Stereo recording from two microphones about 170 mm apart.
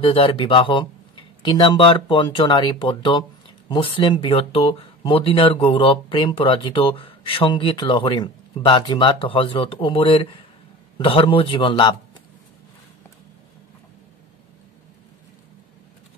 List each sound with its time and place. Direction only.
0.0 s speech: 30° left (ahead or behind)